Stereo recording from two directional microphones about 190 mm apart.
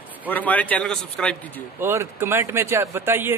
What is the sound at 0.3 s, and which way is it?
A man's voice, 10° left (ahead or behind).